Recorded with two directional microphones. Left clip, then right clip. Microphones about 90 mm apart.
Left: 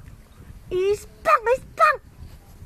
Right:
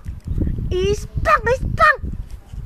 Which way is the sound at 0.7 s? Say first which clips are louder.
Right 1 dB; 55° left (ahead or behind).